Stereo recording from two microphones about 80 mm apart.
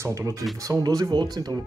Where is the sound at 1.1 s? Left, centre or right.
Right.